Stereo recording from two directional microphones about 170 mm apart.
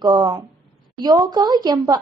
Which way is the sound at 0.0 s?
25° right (ahead or behind).